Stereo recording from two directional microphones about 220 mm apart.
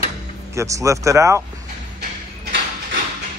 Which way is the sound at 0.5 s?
15° right (ahead or behind).